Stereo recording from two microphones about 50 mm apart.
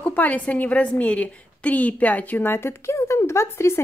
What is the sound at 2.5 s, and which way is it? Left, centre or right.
Speech, left.